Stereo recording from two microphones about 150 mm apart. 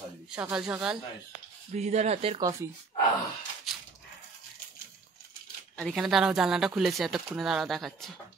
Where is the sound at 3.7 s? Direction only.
Centre (ahead or behind).